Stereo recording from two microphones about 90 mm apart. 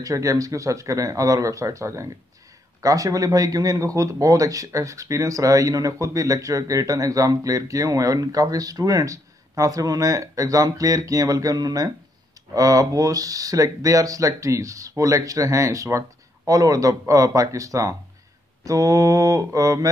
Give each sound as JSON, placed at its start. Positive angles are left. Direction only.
{"t": 0.0, "sound": "speech", "side_deg": -40}